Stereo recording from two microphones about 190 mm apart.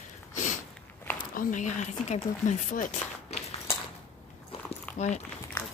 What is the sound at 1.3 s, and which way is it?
Speech, 45° left (ahead or behind).